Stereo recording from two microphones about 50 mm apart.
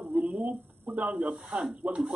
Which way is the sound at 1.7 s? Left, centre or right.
Right.